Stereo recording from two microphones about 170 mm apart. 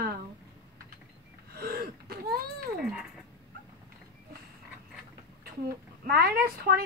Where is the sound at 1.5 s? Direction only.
65° right (ahead or behind).